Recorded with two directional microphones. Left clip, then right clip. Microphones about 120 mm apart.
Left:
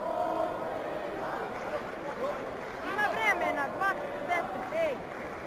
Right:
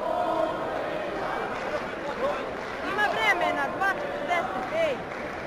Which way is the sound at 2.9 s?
45° right (ahead or behind).